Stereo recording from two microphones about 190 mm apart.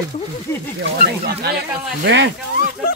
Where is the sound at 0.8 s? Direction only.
60° right (ahead or behind).